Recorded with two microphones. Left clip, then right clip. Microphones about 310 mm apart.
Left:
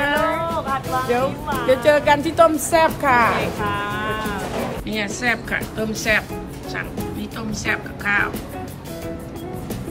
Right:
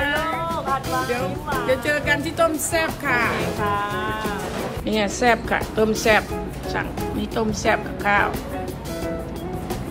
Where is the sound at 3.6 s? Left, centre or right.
Centre.